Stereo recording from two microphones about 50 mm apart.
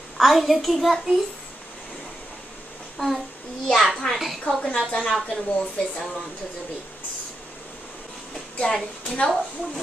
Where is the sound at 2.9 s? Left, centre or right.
Centre.